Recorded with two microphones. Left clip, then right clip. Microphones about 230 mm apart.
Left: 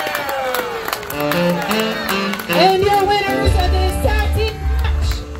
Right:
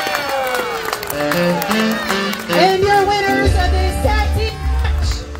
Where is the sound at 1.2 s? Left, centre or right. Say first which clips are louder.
Right 1 dB; left.